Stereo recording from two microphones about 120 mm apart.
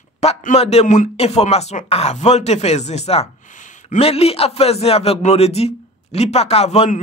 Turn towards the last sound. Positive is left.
turn(degrees=65)  # may be behind; listen again after turning